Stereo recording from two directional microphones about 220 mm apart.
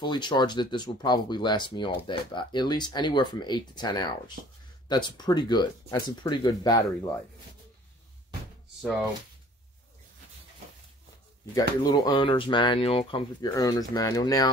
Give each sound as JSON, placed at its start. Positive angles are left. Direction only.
{"t": 0.0, "sound": "speech", "side_deg": 20}
{"t": 11.8, "sound": "speech", "side_deg": 20}